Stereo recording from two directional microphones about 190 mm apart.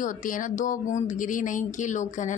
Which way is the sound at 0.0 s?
45° left (ahead or behind).